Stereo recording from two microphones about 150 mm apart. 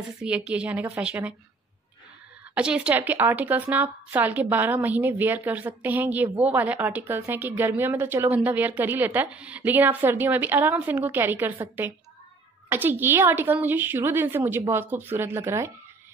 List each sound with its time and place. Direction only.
0.2 s a woman's voice: 5° right (ahead or behind)
2.5 s a woman's voice: 5° right (ahead or behind)